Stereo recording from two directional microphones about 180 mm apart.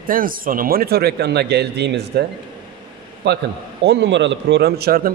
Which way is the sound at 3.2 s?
70° right (ahead or behind).